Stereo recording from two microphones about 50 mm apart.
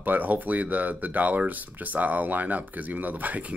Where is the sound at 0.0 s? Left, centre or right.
Right.